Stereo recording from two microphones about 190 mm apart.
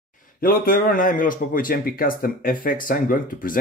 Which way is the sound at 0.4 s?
50° left (ahead or behind).